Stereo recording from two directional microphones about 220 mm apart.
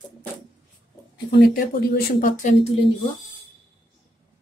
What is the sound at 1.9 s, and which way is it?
Speech, 40° left (ahead or behind).